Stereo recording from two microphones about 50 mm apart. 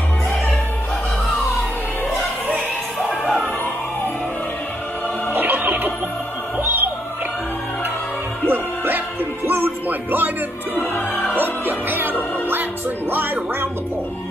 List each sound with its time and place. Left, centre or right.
3.0 s music: centre
5.3 s music: right
8.5 s music: right
10.8 s music: left
11.3 s music: right